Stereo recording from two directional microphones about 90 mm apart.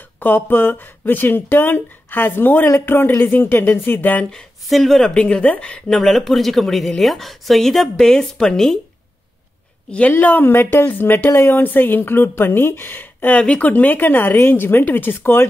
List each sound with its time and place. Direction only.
0.2 s speech: 20° left (ahead or behind); by 8.7 s 5° left (ahead or behind)
9.8 s a woman's voice: 15° left (ahead or behind)